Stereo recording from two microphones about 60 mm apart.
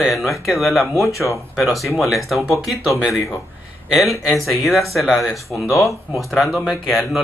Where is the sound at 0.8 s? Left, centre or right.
Left.